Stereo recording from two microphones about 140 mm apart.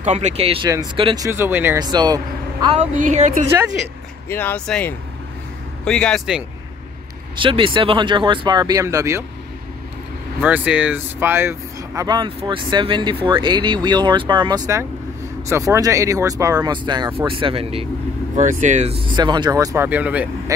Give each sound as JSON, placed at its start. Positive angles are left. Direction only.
{"t": 0.0, "sound": "speech", "side_deg": -55}
{"t": 1.2, "sound": "speech", "side_deg": -15}
{"t": 1.8, "sound": "speech", "side_deg": -30}
{"t": 2.8, "sound": "speech", "side_deg": -60}
{"t": 4.3, "sound": "speech", "side_deg": 15}
{"t": 7.3, "sound": "speech", "side_deg": -35}
{"t": 10.4, "sound": "speech", "side_deg": -10}
{"t": 15.4, "sound": "speech", "side_deg": -20}
{"t": 18.3, "sound": "speech", "side_deg": -60}
{"t": 19.1, "sound": "speech", "side_deg": -30}